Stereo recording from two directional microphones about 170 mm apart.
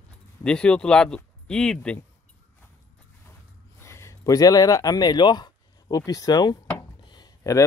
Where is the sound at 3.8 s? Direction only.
15° left (ahead or behind).